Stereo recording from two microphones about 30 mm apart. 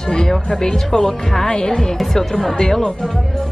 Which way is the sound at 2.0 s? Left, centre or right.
Centre.